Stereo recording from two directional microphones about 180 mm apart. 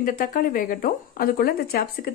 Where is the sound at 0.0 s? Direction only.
50° left (ahead or behind).